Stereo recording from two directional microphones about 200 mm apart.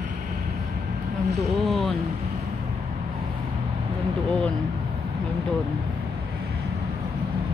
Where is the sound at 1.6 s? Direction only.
Centre (ahead or behind).